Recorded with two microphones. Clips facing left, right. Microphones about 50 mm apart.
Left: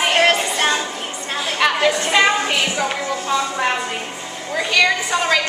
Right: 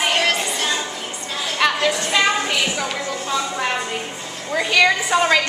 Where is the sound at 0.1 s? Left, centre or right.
Left.